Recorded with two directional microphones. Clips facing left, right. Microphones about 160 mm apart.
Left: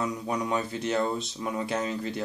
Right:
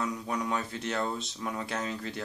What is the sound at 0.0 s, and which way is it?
Speech, 10° left (ahead or behind).